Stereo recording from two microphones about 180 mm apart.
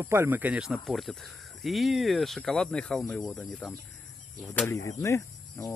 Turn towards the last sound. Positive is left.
turn(degrees=15)  # may be behind; listen again after turning